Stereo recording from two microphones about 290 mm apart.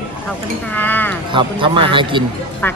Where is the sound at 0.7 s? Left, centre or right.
Centre.